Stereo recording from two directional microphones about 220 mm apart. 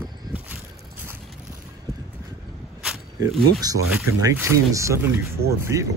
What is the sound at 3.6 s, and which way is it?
Speech, 15° right (ahead or behind).